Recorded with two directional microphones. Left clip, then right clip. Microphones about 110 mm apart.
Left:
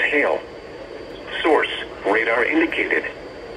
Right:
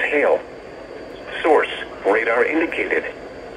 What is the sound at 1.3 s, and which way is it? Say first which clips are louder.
Speech: right 1 dB; 40° right (ahead or behind).